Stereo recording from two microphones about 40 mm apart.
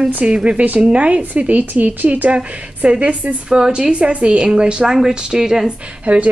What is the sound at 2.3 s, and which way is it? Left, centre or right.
Speech, right.